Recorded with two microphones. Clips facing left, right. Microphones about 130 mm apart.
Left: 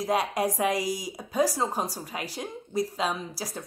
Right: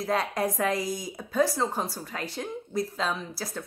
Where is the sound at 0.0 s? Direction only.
15° left (ahead or behind).